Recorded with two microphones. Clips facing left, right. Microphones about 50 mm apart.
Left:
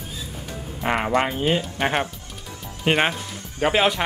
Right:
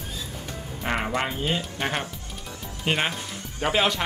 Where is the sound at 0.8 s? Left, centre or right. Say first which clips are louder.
Left 5 dB; centre.